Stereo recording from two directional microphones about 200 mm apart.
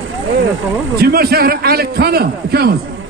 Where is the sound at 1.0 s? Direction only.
50° right (ahead or behind).